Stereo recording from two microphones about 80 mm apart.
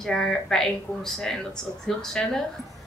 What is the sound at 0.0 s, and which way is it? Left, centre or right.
A woman's voice, centre.